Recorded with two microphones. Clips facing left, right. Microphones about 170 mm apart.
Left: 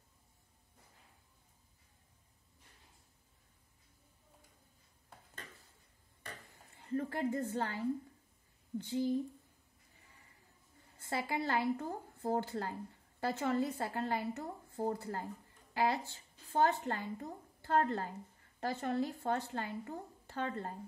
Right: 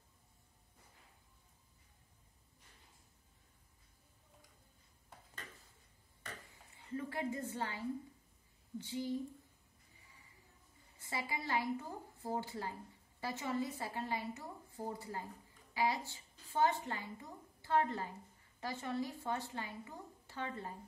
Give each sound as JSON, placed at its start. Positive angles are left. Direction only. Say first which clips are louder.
{"t": 6.8, "sound": "a woman's voice", "louder": "left 5 dB", "side_deg": 50}
{"t": 11.0, "sound": "a woman's voice", "louder": "left 6 dB", "side_deg": 60}